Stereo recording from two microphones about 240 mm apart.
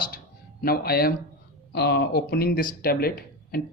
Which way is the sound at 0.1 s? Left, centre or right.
Left.